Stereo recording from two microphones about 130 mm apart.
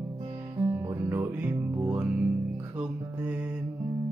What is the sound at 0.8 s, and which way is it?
Music, 25° right (ahead or behind).